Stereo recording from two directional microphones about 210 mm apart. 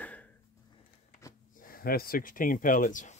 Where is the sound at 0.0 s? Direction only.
5° left (ahead or behind).